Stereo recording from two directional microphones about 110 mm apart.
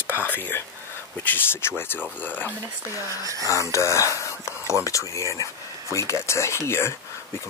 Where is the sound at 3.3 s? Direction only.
30° right (ahead or behind).